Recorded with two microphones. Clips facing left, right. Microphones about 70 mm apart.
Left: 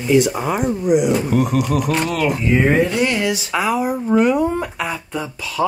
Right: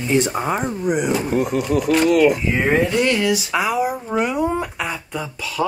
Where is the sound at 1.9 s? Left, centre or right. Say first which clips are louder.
Right 5 dB; centre.